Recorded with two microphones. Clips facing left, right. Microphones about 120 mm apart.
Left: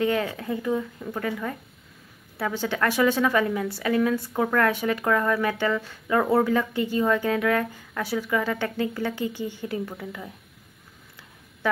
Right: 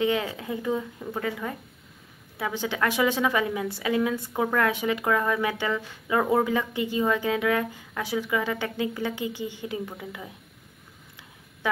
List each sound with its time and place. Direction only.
0.0 s a woman's voice: 20° right (ahead or behind)